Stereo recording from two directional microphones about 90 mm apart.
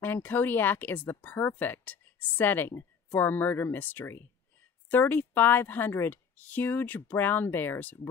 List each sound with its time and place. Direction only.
0.0 s a woman's voice: 20° left (ahead or behind)